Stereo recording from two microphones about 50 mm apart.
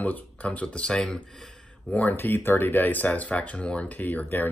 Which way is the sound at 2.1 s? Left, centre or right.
Left.